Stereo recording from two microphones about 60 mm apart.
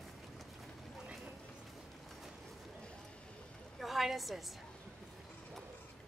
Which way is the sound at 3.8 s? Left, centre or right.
Centre.